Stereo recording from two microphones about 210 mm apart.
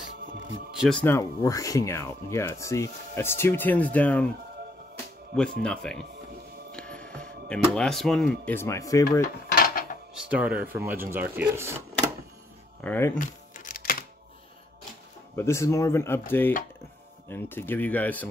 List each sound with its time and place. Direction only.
0.7 s speech: 5° left (ahead or behind)
5.3 s speech: 5° left (ahead or behind)
9.2 s cutlery: 45° left (ahead or behind)
10.1 s speech: 5° right (ahead or behind)
12.8 s speech: 10° left (ahead or behind)
13.2 s music: 40° left (ahead or behind)
15.3 s speech: 10° left (ahead or behind)